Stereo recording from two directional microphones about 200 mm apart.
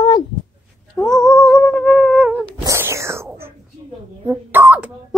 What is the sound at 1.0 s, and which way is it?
Humming, 5° left (ahead or behind).